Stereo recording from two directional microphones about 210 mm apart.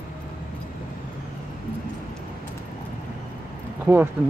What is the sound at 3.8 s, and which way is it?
Speech, 10° right (ahead or behind).